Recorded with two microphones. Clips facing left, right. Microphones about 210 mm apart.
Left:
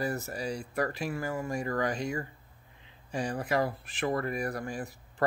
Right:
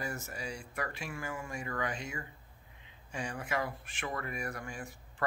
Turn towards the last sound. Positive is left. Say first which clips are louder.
# left 7 dB
turn(degrees=35)  # may be behind; listen again after turning